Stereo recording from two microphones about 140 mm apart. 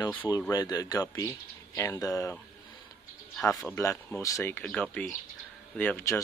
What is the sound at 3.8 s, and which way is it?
Speech, 15° left (ahead or behind).